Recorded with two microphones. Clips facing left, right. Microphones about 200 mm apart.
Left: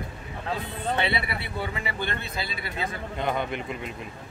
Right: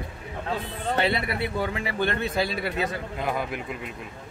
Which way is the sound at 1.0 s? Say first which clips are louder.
Right 4 dB; 45° right (ahead or behind).